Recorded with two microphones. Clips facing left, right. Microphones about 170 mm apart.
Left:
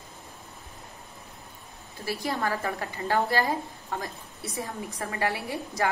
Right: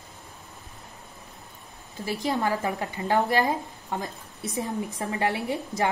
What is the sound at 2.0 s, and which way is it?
A woman's voice, 20° right (ahead or behind).